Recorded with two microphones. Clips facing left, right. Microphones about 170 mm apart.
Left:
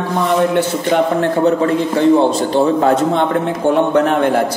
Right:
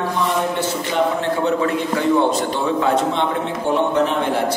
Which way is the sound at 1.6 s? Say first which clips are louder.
Left 6 dB; 35° left (ahead or behind).